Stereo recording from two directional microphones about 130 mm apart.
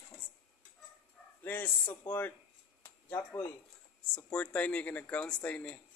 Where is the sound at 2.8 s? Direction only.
15° left (ahead or behind).